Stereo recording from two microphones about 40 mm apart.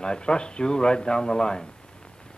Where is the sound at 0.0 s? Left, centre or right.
Left.